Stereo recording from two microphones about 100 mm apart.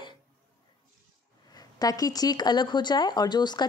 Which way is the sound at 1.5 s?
40° left (ahead or behind).